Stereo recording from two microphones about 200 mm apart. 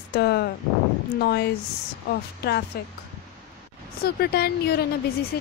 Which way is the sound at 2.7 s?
50° left (ahead or behind).